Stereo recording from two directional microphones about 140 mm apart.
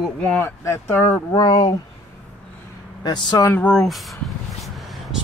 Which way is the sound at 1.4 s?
30° left (ahead or behind).